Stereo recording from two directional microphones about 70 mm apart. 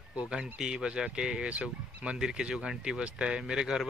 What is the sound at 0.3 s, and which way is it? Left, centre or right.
Speech, centre.